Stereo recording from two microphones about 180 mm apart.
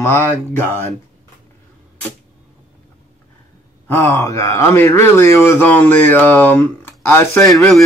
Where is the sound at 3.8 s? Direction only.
15° left (ahead or behind).